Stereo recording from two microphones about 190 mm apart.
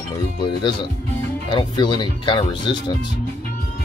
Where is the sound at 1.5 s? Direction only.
25° left (ahead or behind).